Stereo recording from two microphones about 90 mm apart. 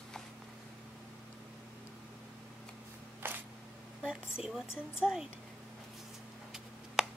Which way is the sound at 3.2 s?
25° right (ahead or behind).